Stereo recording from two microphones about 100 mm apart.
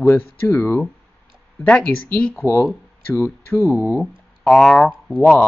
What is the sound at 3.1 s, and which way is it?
Speech, 30° left (ahead or behind).